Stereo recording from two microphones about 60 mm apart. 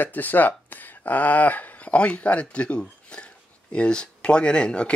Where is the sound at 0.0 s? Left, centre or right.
Left.